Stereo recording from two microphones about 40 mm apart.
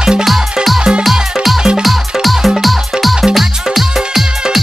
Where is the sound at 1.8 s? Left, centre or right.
Centre.